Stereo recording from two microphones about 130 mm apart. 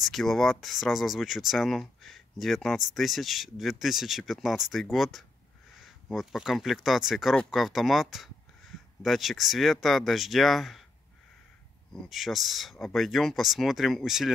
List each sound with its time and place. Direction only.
0.0 s speech: centre (ahead or behind)
11.9 s speech: centre (ahead or behind)